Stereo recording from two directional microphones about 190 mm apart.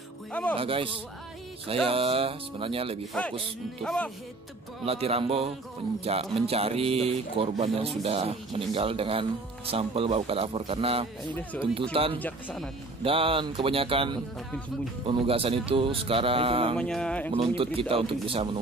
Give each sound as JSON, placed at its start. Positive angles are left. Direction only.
{"t": 0.3, "sound": "speech", "side_deg": 10}
{"t": 0.6, "sound": "speech", "side_deg": -30}
{"t": 3.8, "sound": "a sound", "side_deg": 5}
{"t": 4.8, "sound": "speech", "side_deg": -30}
{"t": 12.2, "sound": "speech", "side_deg": 10}
{"t": 13.0, "sound": "speech", "side_deg": -30}
{"t": 16.7, "sound": "a sound", "side_deg": 5}
{"t": 17.3, "sound": "speech", "side_deg": -30}